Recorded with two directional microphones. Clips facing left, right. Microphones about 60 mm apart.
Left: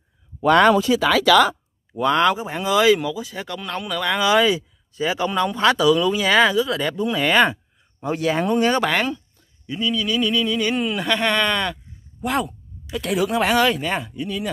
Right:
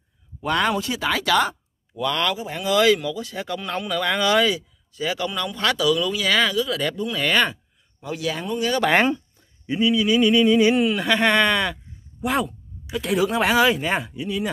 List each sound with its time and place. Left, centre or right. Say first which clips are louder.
0.5 s speech: left 8 dB; left
2.0 s speech: left 6 dB; left
2.7 s speech: left 1 dB; centre
4.2 s speech: left 2 dB; centre
4.5 s speech: left 3 dB; left
8.0 s speech: left 6 dB; left
8.9 s speech: right 4 dB; right
10.7 s speech: right 2 dB; centre